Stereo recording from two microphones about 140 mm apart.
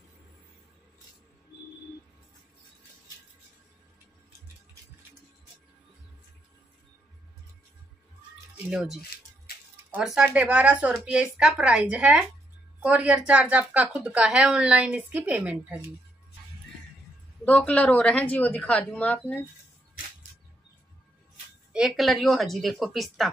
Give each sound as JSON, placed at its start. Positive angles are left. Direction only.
{"t": 8.6, "sound": "a woman's voice", "side_deg": -5}
{"t": 17.5, "sound": "speech", "side_deg": 10}
{"t": 21.7, "sound": "a woman's voice", "side_deg": 0}